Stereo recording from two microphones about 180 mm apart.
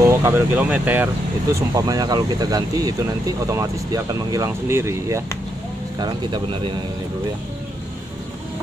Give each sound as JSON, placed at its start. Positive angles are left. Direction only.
{"t": 0.0, "sound": "speech", "side_deg": -15}